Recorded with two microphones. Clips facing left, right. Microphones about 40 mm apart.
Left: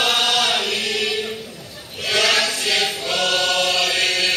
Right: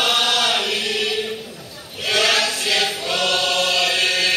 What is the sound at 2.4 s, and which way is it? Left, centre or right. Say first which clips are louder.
Choir: even; centre.